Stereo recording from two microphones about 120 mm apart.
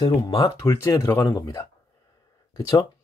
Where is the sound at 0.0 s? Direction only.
35° left (ahead or behind).